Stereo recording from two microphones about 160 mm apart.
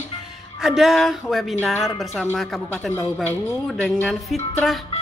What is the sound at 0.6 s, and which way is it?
Speech, centre (ahead or behind).